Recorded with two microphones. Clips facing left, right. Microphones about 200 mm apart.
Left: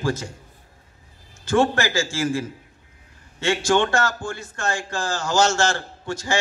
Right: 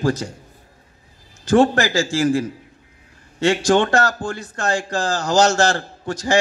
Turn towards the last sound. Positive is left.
turn(degrees=-35)  # may be behind; listen again after turning